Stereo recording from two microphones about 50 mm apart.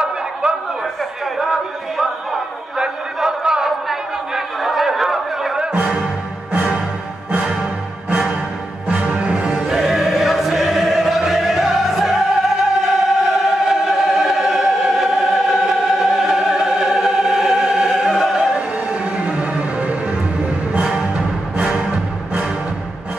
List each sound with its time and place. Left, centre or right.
0.0 s a sound: centre
2.8 s a sound: centre
5.6 s music: centre
7.2 s music: right
8.8 s music: right
9.7 s music: centre
18.9 s music: right